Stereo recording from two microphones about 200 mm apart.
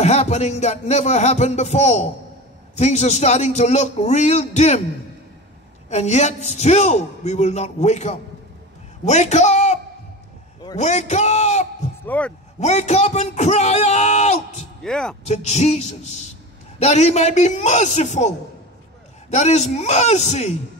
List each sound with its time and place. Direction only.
0.0 s a man's voice: 35° left (ahead or behind)
5.9 s a man's voice: 35° left (ahead or behind)
10.8 s a man's voice: 35° left (ahead or behind)
12.0 s speech: 5° left (ahead or behind)
12.5 s a man's voice: 35° left (ahead or behind)
14.8 s speech: 5° left (ahead or behind)
15.2 s a man's voice: 35° left (ahead or behind)
19.3 s a man's voice: 35° left (ahead or behind)